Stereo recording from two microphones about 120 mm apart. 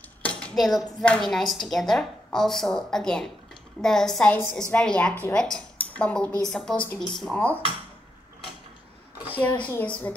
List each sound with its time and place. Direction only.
0.2 s a woman's voice: 10° left (ahead or behind)
9.3 s a woman's voice: 15° left (ahead or behind)